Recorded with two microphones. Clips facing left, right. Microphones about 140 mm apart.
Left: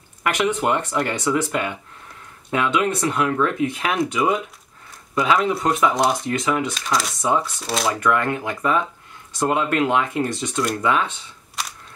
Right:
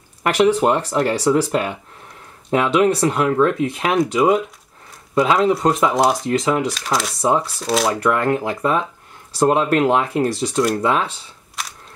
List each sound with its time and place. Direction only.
0.6 s speech: 35° right (ahead or behind)
6.7 s speech: centre (ahead or behind)
7.2 s speech: 30° right (ahead or behind)
7.4 s speech: centre (ahead or behind)
8.0 s speech: 30° right (ahead or behind)